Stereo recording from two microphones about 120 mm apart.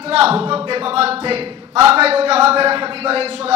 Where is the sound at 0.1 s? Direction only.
55° right (ahead or behind).